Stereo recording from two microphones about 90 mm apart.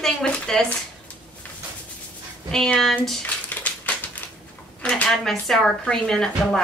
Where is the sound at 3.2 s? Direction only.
15° left (ahead or behind).